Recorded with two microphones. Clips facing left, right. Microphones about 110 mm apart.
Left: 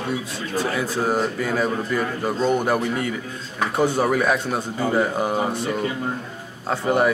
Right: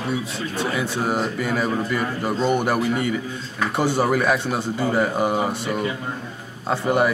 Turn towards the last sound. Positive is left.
turn(degrees=0)  # may be behind; listen again after turning